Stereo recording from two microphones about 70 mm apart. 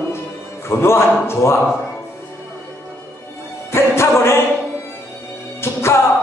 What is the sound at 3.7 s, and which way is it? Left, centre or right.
Music, left.